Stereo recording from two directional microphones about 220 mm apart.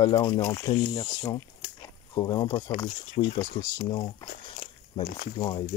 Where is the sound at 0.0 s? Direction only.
20° left (ahead or behind).